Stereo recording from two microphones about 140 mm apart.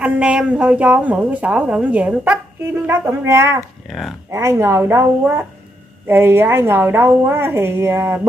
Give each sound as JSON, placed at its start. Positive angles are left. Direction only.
{"t": 0.0, "sound": "a woman's voice", "side_deg": -5}